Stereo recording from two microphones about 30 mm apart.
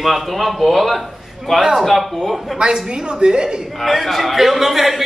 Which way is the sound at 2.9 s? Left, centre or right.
Right.